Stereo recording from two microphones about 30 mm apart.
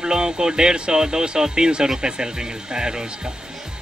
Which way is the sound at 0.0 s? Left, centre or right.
Right.